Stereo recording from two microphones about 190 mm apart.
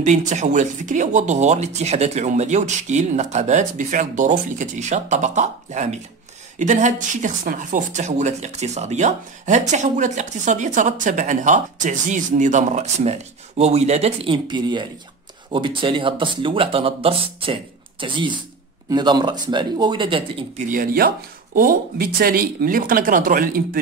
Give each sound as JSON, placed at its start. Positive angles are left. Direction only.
{"t": 0.0, "sound": "speech", "side_deg": -40}
{"t": 20.6, "sound": "speech", "side_deg": -45}